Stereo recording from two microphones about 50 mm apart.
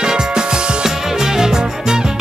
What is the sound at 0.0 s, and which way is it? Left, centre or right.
Music, centre.